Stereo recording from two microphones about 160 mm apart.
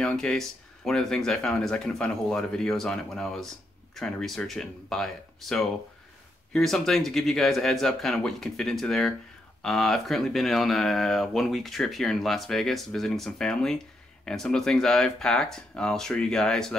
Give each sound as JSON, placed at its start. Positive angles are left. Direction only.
{"t": 0.0, "sound": "speech", "side_deg": 5}